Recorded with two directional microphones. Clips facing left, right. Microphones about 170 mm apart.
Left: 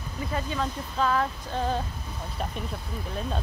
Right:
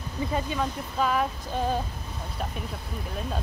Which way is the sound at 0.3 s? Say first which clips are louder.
Even; 15° right (ahead or behind).